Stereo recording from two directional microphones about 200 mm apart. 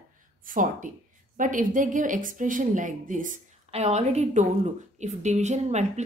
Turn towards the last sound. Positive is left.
turn(degrees=-35)  # may be behind; listen again after turning